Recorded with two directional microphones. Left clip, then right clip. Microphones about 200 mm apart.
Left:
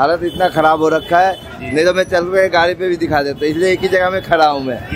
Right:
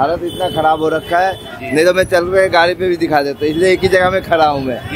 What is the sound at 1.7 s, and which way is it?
Speech, centre (ahead or behind).